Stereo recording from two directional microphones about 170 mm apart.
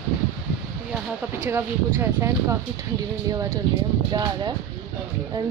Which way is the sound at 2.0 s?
15° right (ahead or behind).